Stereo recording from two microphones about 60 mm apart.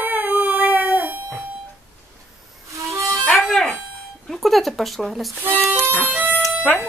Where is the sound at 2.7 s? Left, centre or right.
Right.